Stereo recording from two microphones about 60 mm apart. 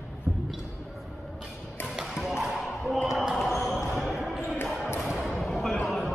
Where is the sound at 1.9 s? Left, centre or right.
Centre.